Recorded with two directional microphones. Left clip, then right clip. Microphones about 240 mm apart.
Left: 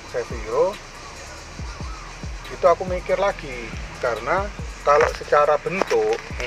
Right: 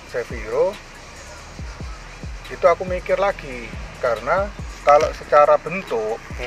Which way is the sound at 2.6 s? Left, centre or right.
Centre.